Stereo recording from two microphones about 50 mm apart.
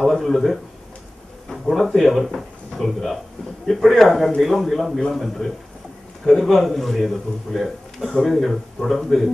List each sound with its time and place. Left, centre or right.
0.0 s a man's voice: centre